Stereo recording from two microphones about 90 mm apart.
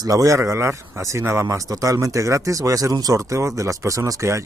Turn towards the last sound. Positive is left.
turn(degrees=-35)  # may be behind; listen again after turning